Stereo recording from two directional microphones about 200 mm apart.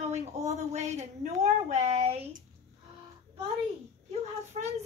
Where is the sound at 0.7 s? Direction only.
35° right (ahead or behind).